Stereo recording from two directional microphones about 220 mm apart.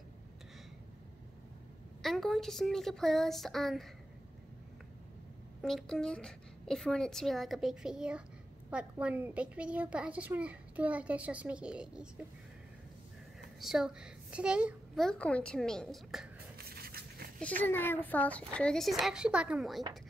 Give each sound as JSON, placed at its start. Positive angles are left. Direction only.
{"t": 2.0, "sound": "a child's voice", "side_deg": 0}
{"t": 5.6, "sound": "a child's voice", "side_deg": 0}
{"t": 13.6, "sound": "a child's voice", "side_deg": 0}
{"t": 16.5, "sound": "a sound", "side_deg": -45}
{"t": 17.4, "sound": "a child's voice", "side_deg": 5}